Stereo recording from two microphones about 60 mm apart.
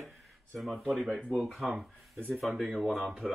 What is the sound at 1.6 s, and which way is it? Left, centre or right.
Speech, centre.